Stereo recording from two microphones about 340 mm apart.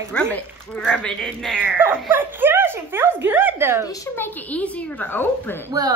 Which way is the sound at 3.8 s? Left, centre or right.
Centre.